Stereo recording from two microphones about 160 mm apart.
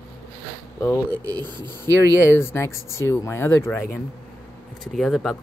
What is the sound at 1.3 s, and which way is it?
Speech, 25° right (ahead or behind).